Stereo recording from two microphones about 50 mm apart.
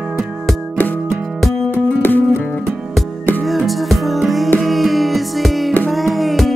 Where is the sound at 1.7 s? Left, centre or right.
Left.